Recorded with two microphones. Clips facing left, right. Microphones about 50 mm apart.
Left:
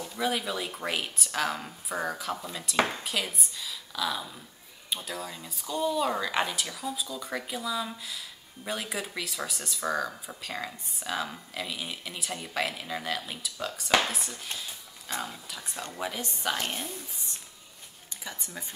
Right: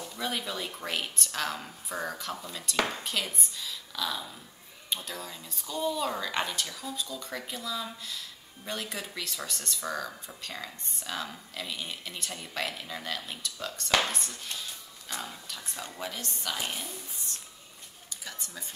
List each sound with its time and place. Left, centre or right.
0.0 s speech: centre
16.7 s speech: centre
18.1 s speech: centre